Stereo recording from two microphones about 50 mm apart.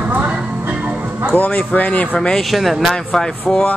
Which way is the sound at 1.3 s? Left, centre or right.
Left.